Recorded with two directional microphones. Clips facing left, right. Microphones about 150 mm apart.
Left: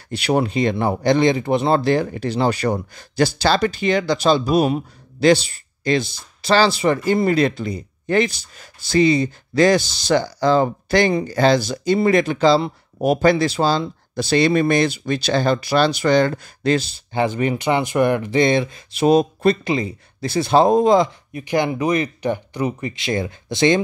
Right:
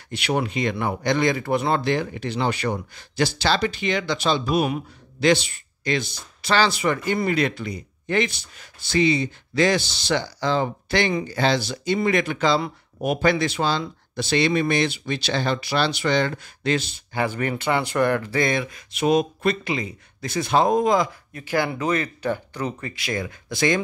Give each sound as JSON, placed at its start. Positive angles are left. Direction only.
{"t": 0.1, "sound": "speech", "side_deg": 35}
{"t": 1.9, "sound": "speech", "side_deg": 35}
{"t": 17.1, "sound": "speech", "side_deg": 20}
{"t": 21.3, "sound": "speech", "side_deg": 15}